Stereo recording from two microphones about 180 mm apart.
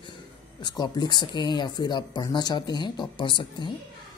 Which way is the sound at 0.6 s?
20° left (ahead or behind).